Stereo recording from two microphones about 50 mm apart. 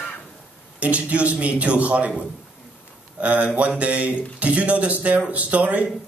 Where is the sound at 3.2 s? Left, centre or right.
Right.